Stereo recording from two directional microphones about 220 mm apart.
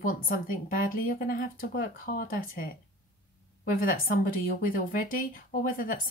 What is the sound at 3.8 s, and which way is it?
Speech, 40° left (ahead or behind).